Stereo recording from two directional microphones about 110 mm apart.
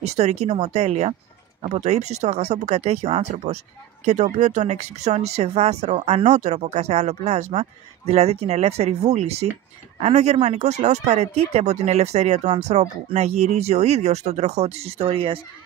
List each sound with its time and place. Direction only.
0.0 s speech: 80° right
1.6 s speech: 90° right
8.1 s speech: 75° right (ahead or behind); by 15.4 s 55° right (ahead or behind)